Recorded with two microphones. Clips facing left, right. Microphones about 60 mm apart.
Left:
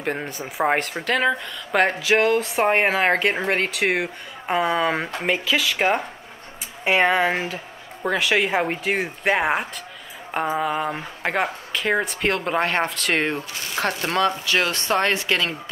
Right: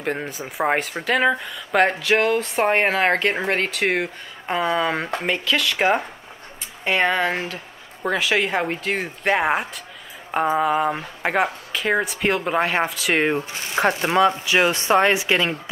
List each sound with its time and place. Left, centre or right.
0.0 s speech: centre
13.4 s speech: right